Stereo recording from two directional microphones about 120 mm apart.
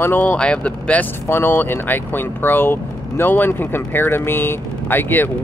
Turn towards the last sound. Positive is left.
turn(degrees=15)  # may be behind; listen again after turning